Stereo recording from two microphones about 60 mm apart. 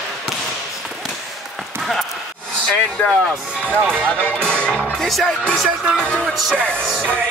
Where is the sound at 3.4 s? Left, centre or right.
Right.